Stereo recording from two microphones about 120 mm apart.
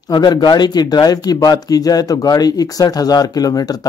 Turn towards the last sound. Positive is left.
turn(degrees=30)  # may be behind; listen again after turning